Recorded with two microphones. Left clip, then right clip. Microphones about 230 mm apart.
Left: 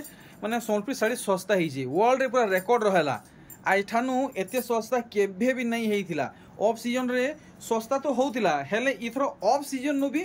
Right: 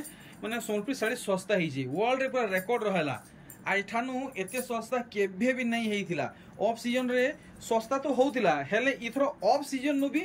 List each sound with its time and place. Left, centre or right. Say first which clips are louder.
0.4 s speech: left 5 dB; centre